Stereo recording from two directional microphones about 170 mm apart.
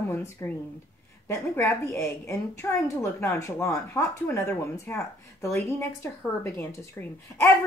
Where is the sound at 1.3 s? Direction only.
15° left (ahead or behind).